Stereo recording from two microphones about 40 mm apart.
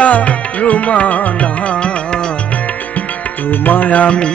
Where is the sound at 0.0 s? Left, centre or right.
Left.